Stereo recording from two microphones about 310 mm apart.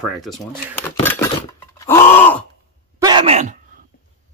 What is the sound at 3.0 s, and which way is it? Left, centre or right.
Groan, centre.